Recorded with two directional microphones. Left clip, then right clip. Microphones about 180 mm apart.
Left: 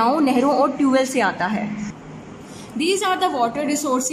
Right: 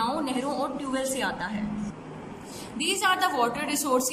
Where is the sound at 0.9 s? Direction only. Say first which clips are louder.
Left 10 dB; 40° left (ahead or behind).